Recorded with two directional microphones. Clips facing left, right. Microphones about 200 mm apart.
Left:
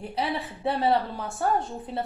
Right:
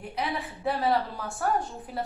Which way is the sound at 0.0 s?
30° left (ahead or behind).